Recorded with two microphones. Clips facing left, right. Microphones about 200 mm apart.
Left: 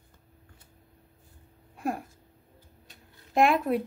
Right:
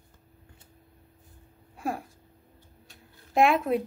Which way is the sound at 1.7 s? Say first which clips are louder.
Left 1 dB; centre (ahead or behind).